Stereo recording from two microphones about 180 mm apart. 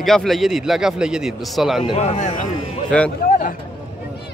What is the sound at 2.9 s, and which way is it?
Speech, 5° left (ahead or behind).